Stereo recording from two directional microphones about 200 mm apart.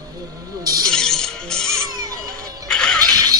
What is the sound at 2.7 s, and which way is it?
Music, 5° left (ahead or behind).